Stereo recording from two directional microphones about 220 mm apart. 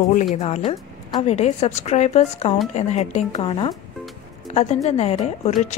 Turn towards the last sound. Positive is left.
turn(degrees=30)  # may be behind; listen again after turning